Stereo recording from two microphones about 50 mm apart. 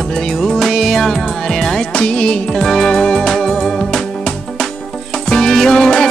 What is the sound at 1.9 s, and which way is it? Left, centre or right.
Music, centre.